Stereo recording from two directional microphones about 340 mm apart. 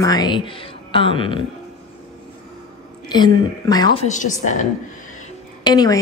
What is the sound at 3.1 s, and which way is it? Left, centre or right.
A woman's voice, centre.